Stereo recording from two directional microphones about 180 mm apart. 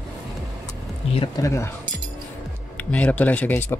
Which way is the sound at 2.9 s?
10° left (ahead or behind).